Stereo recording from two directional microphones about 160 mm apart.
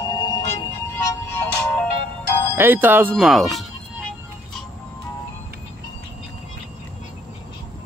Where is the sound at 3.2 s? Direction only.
Centre (ahead or behind).